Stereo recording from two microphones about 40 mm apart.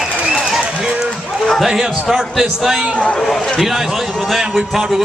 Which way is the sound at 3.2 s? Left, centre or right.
Centre.